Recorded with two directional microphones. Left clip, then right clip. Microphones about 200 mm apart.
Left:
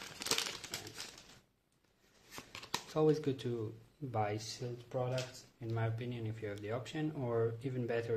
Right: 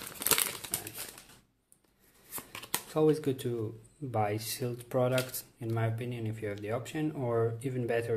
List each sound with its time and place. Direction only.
0.2 s crumpling: 5° right (ahead or behind)
2.3 s speech: 5° left (ahead or behind)
4.6 s speech: 25° right (ahead or behind)
5.6 s speech: 5° right (ahead or behind)